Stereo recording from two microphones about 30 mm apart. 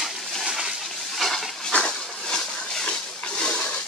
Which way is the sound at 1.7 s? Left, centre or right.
Left.